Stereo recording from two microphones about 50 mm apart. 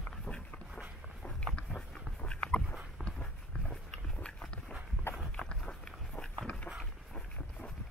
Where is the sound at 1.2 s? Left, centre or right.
Centre.